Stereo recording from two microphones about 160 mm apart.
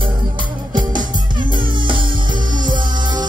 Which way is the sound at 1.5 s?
30° right (ahead or behind).